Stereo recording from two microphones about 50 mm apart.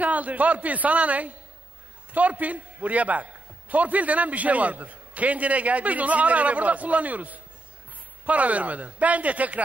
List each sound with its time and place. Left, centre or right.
0.0 s a man's voice: right